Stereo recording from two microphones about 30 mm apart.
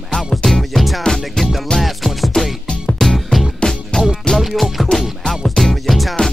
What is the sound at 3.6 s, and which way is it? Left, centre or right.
Music, left.